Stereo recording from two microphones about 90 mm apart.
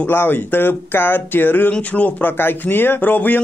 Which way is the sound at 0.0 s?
25° left (ahead or behind).